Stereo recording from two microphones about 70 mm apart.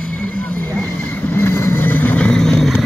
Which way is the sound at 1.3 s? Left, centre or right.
Left.